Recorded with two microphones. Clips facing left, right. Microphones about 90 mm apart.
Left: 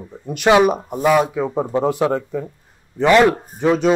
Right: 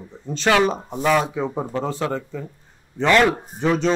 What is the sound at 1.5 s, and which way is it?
Speech, 15° left (ahead or behind).